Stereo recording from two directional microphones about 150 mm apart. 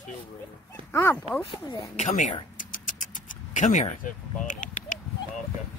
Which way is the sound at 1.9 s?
55° left (ahead or behind).